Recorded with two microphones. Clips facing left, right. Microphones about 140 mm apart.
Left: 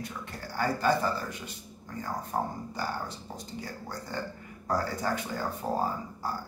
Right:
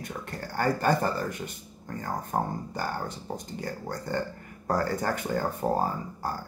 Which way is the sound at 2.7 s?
50° right (ahead or behind).